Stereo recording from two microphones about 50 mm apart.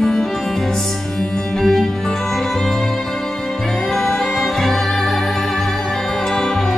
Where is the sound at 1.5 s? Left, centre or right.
Centre.